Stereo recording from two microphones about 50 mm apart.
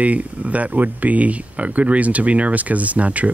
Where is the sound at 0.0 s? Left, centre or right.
Right.